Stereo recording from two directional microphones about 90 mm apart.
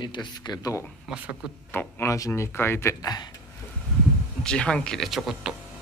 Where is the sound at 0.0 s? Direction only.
55° left (ahead or behind).